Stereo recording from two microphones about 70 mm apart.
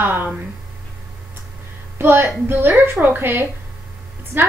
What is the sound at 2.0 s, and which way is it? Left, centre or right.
A woman's voice, right.